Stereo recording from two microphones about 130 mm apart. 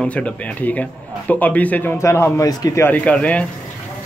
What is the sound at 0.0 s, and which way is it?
Speech, 10° left (ahead or behind).